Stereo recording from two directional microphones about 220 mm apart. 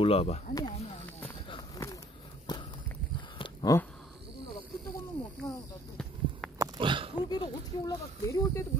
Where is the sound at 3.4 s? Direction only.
20° left (ahead or behind).